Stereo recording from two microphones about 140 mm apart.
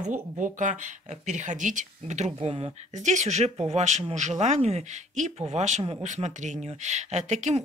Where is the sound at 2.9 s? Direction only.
60° right (ahead or behind).